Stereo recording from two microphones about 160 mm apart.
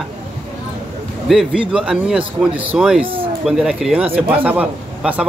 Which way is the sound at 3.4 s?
5° right (ahead or behind).